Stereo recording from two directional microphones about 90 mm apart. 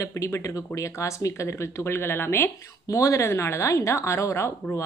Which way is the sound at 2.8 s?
35° left (ahead or behind).